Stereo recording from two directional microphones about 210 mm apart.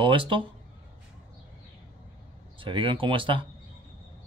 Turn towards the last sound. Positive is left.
turn(degrees=-25)  # may be behind; listen again after turning